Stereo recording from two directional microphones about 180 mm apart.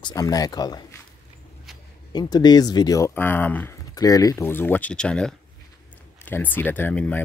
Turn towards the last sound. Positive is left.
turn(degrees=10)  # may be behind; listen again after turning